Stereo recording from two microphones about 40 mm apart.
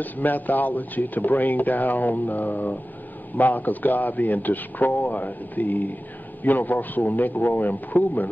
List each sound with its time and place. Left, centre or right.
0.0 s speech: left